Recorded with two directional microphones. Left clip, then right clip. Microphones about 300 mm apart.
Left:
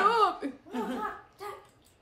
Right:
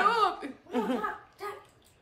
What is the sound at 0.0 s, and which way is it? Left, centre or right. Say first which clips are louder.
Chuckle: left 1 dB; centre.